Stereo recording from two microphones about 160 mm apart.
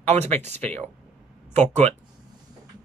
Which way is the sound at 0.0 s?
45° right (ahead or behind).